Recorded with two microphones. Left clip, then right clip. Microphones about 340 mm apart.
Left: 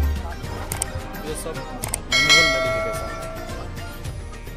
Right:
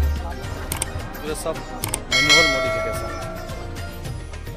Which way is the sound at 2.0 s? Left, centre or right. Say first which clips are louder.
Even; centre.